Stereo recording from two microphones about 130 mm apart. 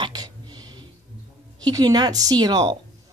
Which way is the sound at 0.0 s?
35° right (ahead or behind).